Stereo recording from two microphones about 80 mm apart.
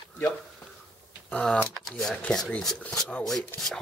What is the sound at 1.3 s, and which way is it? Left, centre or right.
Speech, centre.